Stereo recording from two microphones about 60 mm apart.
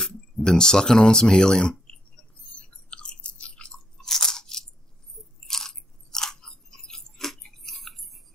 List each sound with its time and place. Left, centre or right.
0.0 s speech: centre
2.5 s chewing: centre
2.9 s crunch: centre
5.2 s biting: centre